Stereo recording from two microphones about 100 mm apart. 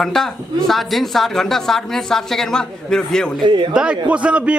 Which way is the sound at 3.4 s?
55° right (ahead or behind).